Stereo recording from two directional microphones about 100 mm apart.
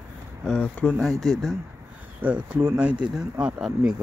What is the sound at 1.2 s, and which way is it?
Speech, centre (ahead or behind).